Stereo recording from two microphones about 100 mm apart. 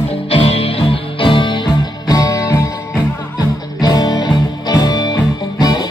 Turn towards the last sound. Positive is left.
turn(degrees=40)  # may be behind; listen again after turning